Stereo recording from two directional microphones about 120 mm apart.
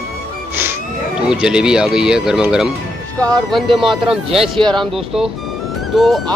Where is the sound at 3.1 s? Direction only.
10° left (ahead or behind).